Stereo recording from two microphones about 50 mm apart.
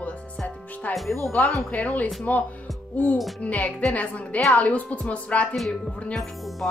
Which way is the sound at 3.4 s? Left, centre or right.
Left.